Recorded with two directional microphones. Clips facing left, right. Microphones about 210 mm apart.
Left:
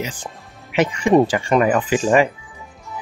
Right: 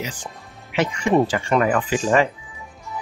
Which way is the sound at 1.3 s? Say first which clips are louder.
Left 3 dB; 15° left (ahead or behind).